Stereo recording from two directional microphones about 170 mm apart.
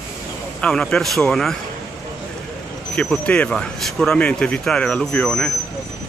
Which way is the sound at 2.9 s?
5° left (ahead or behind).